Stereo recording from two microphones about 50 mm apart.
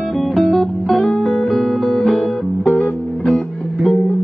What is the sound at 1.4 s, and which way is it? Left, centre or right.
Guitar, centre.